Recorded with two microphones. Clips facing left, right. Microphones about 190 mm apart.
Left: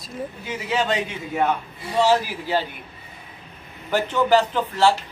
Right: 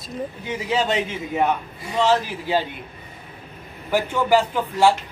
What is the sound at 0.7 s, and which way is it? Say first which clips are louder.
Speech: right 1 dB; 20° right (ahead or behind).